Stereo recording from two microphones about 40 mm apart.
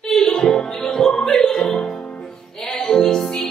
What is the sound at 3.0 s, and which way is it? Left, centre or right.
Music, centre.